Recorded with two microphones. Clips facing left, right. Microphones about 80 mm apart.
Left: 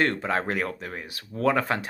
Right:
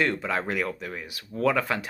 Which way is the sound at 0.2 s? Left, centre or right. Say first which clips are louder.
Left 1 dB; left.